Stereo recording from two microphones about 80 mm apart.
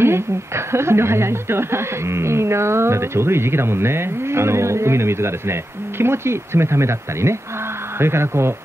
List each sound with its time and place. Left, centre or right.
0.0 s a woman's voice: right